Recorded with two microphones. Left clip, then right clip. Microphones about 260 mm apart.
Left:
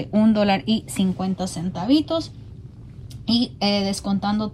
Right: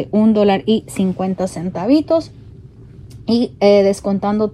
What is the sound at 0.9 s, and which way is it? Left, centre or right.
Speech, left.